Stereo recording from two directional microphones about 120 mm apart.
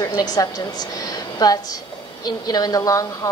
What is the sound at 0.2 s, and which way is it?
A woman's voice, 35° left (ahead or behind).